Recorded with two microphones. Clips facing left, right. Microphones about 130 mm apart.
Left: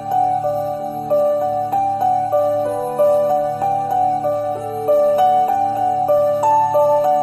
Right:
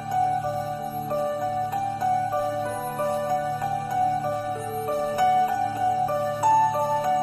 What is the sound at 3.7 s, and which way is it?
Music, 30° left (ahead or behind).